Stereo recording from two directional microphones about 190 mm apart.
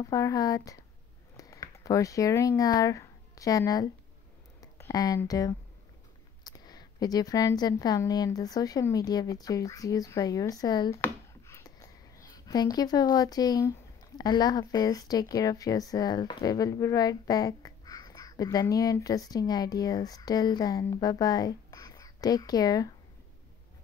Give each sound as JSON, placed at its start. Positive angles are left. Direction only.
{"t": 0.0, "sound": "speech", "side_deg": 20}
{"t": 4.6, "sound": "a sound", "side_deg": 15}
{"t": 6.4, "sound": "a woman's voice", "side_deg": 20}